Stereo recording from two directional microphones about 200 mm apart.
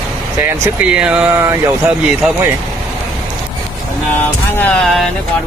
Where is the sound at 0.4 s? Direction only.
10° right (ahead or behind).